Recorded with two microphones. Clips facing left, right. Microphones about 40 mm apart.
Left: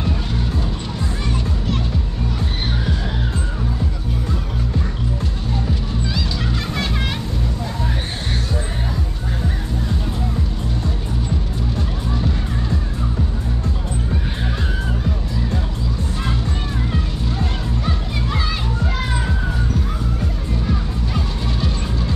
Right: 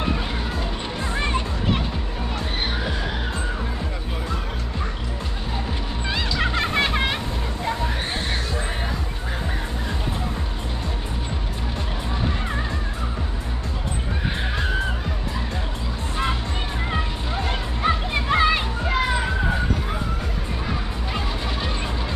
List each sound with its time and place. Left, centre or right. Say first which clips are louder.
6.0 s music: right 3 dB; right
16.9 s music: left 1 dB; right
18.9 s music: right 2 dB; centre
21.1 s music: even; right